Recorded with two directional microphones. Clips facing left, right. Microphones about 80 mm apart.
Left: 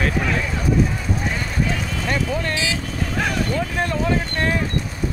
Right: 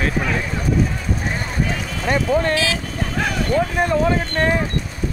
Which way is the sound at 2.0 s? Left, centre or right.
Right.